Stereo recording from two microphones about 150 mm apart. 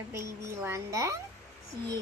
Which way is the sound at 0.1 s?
20° right (ahead or behind).